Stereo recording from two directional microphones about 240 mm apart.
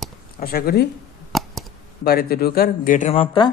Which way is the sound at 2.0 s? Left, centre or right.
Left.